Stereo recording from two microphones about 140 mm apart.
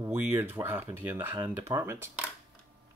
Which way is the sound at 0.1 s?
15° right (ahead or behind).